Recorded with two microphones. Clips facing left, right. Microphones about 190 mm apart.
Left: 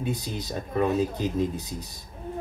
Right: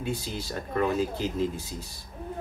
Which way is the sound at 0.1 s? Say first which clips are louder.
Left 1 dB; 20° left (ahead or behind).